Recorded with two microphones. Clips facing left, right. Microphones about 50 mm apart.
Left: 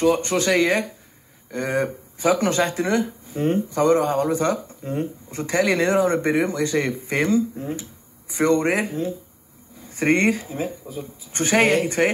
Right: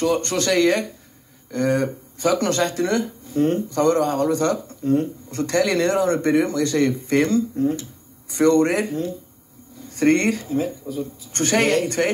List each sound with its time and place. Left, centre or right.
0.0 s speech: centre